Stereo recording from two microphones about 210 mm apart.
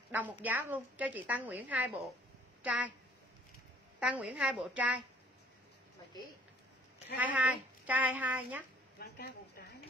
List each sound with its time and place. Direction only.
0.1 s a woman's voice: 10° right (ahead or behind)
4.0 s a woman's voice: 5° right (ahead or behind)
7.2 s a woman's voice: 5° right (ahead or behind)
9.0 s a sound: 50° left (ahead or behind)